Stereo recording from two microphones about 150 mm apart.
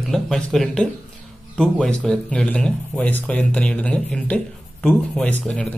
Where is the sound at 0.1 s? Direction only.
Centre (ahead or behind).